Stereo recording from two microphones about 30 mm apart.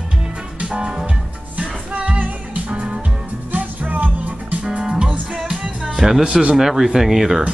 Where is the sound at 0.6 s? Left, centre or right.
Right.